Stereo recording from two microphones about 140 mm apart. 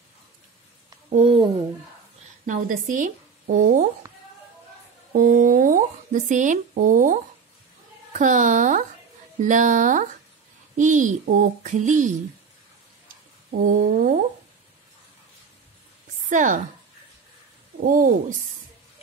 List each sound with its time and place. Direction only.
1.1 s speech: 45° right (ahead or behind)
2.4 s speech: 75° right (ahead or behind)
5.1 s speech: 70° right (ahead or behind)
8.1 s a sound: 65° right (ahead or behind)
13.5 s speech: 75° right (ahead or behind)
16.3 s speech: 65° right (ahead or behind)
17.7 s speech: 85° right